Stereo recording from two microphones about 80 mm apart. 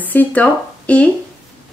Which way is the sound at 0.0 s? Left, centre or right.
Left.